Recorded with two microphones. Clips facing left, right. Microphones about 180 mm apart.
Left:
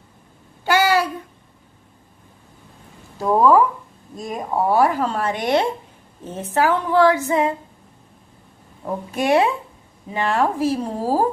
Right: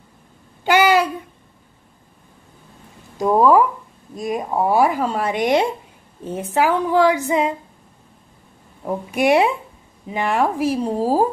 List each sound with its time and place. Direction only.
0.7 s babbling: 15° right (ahead or behind)
3.3 s speech: 10° right (ahead or behind)
9.1 s speech: 15° right (ahead or behind)